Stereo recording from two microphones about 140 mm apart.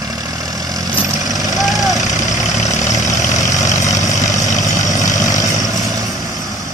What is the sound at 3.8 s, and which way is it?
Vehicle, 20° left (ahead or behind).